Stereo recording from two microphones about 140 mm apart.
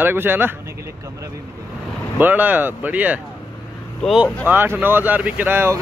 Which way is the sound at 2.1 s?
10° right (ahead or behind).